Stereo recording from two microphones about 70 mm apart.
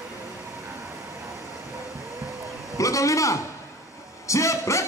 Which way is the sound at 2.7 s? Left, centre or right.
Left.